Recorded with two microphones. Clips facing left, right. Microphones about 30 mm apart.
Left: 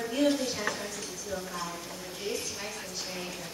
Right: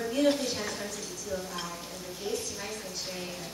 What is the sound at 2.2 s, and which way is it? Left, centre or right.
Speech, left.